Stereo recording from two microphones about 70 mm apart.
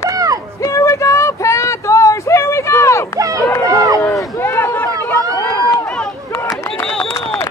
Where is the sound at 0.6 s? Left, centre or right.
Left.